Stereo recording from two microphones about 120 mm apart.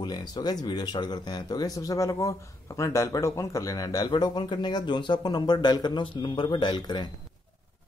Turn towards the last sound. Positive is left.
turn(degrees=35)  # may be behind; listen again after turning